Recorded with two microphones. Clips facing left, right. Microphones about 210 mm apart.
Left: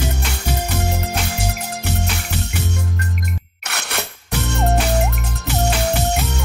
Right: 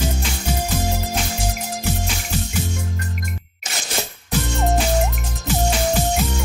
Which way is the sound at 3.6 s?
65° left (ahead or behind).